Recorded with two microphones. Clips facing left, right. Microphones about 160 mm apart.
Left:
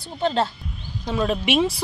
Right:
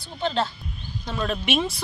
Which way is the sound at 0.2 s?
45° left (ahead or behind).